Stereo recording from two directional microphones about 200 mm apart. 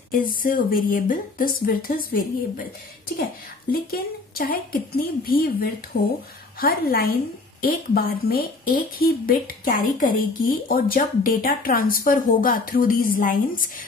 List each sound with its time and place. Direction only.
0.1 s a woman's voice: 45° left (ahead or behind)
3.7 s a woman's voice: 50° left (ahead or behind)